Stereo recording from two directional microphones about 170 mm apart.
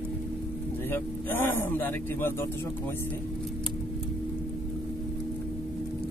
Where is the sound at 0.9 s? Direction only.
10° left (ahead or behind).